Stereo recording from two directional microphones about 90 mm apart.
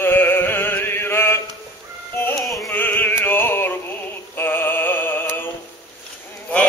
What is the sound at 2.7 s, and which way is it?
Music, 20° left (ahead or behind).